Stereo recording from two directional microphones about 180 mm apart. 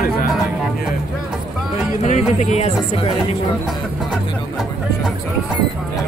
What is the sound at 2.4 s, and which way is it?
Speech, 40° left (ahead or behind).